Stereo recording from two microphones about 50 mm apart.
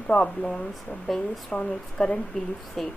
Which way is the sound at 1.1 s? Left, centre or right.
Centre.